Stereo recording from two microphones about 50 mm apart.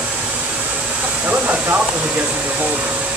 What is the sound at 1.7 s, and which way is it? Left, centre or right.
Speech, right.